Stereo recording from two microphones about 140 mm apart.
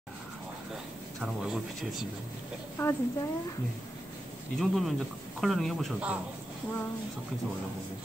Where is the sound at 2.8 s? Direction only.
20° left (ahead or behind).